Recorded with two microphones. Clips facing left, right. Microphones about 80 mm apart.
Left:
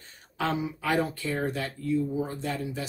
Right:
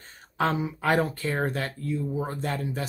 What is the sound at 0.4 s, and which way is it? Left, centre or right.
Speech, right.